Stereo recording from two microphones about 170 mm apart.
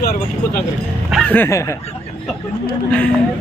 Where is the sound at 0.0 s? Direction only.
65° left (ahead or behind).